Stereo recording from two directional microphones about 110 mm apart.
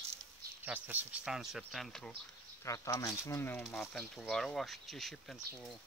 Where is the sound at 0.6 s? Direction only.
15° right (ahead or behind).